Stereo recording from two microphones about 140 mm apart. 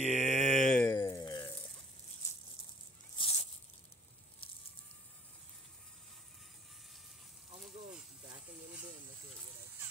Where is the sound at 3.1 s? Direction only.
40° left (ahead or behind).